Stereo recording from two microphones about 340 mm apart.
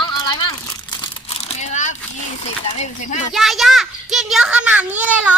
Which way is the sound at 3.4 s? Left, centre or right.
Centre.